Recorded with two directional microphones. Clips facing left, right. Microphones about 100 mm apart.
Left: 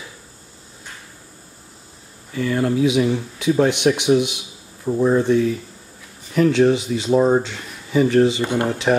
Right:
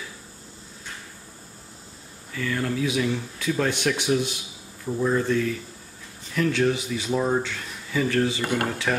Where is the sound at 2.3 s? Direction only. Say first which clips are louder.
Left 7 dB; 25° left (ahead or behind).